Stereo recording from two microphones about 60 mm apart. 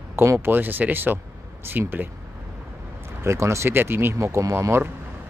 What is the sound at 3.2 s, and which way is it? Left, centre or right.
Speech, right.